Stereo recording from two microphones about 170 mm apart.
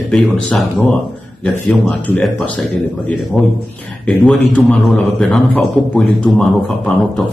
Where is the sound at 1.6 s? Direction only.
5° left (ahead or behind).